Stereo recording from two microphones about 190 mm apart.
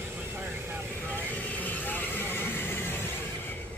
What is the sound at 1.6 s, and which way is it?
Vehicle, 10° left (ahead or behind).